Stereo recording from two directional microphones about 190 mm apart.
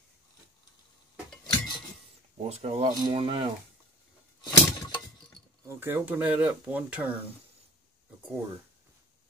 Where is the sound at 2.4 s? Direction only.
35° right (ahead or behind).